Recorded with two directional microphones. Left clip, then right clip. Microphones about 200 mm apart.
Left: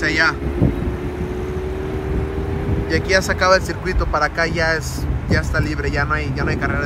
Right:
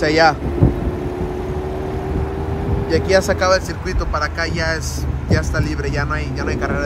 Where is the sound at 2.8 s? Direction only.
20° right (ahead or behind).